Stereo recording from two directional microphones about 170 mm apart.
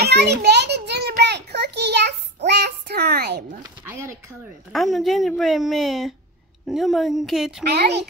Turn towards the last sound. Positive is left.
turn(degrees=-70)  # may be behind; listen again after turning